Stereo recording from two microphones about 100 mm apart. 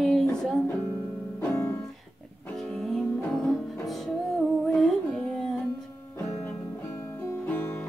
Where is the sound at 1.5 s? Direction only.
30° left (ahead or behind).